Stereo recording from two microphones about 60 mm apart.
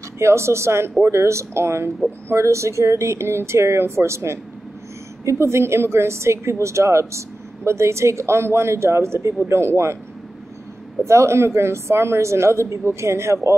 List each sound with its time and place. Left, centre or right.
0.2 s speech: right
11.1 s speech: right